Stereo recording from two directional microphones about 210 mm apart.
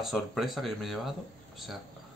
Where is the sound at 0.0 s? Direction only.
Centre (ahead or behind).